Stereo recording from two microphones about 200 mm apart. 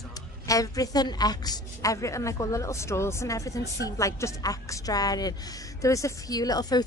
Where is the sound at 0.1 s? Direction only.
15° left (ahead or behind).